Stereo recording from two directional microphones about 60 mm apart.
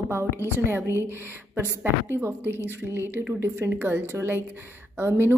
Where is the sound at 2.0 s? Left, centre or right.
Right.